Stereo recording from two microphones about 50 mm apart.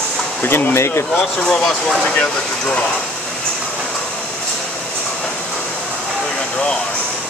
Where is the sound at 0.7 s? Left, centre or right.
Left.